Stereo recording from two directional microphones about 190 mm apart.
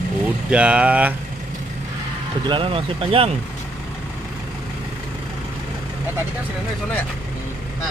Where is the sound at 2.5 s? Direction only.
30° right (ahead or behind).